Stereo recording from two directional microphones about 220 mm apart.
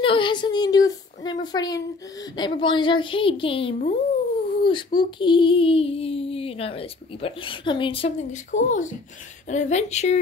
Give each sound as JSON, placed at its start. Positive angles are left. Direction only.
{"t": 0.0, "sound": "child singing", "side_deg": 20}
{"t": 9.5, "sound": "speech", "side_deg": 35}